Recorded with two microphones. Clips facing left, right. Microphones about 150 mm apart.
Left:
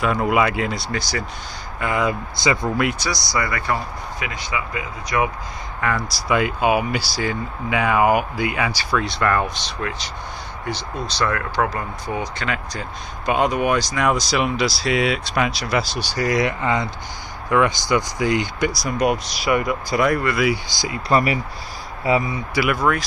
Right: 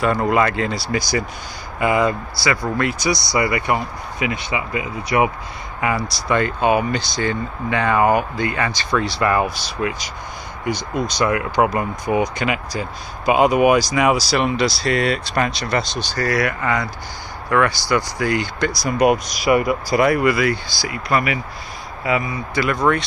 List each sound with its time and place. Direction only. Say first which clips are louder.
0.0 s speech: right 1 dB; 5° left (ahead or behind)
0.7 s speech: right 4 dB; 10° right (ahead or behind)
2.3 s speech: even; 20° left (ahead or behind)
3.0 s speech: right 5 dB; 20° right (ahead or behind)
5.8 s speech: right 2 dB; 10° right (ahead or behind)
6.0 s speech: right 1 dB; 5° left (ahead or behind)
18.8 s speech: right 7 dB; 5° right (ahead or behind)
20.6 s speech: even; 20° left (ahead or behind)
21.1 s speech: left 2 dB; 35° left (ahead or behind)
22.5 s speech: right 2 dB; 5° left (ahead or behind)